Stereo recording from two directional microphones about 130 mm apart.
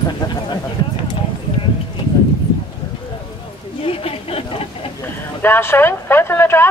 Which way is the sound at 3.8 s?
45° left (ahead or behind).